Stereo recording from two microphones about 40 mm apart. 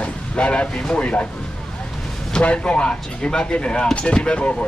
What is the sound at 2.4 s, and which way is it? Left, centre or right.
Speech, left.